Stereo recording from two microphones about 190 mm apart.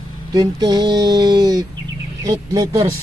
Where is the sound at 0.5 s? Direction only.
20° right (ahead or behind).